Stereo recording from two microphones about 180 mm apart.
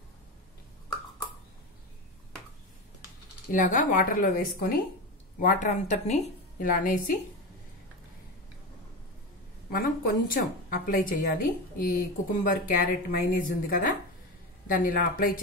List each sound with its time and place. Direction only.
3.5 s a woman's voice: 45° left (ahead or behind)
9.7 s a woman's voice: 55° left (ahead or behind)